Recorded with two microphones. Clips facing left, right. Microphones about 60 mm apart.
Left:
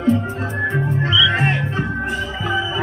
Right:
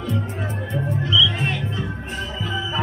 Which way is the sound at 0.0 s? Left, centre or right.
Left.